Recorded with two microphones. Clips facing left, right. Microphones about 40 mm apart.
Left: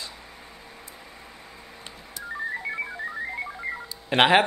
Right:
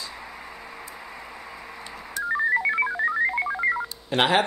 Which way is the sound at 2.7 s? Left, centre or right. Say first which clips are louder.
Right 8 dB; right.